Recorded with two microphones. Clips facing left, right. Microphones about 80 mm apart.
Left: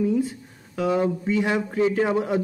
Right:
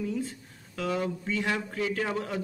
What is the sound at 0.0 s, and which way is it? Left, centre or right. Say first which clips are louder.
Speech: left 9 dB; centre.